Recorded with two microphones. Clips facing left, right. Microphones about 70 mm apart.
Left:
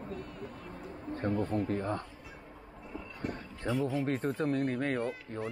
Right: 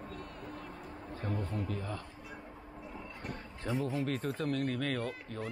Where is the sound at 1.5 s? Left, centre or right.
Left.